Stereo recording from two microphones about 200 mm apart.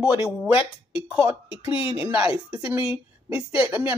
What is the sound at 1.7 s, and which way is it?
Speech, 25° left (ahead or behind).